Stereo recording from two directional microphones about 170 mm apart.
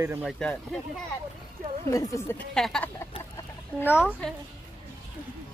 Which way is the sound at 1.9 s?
20° left (ahead or behind).